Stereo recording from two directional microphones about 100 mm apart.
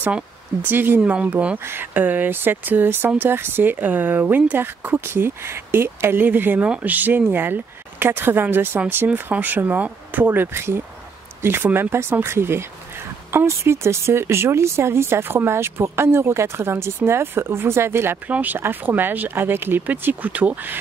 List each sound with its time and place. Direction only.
0.0 s speech: 20° right (ahead or behind)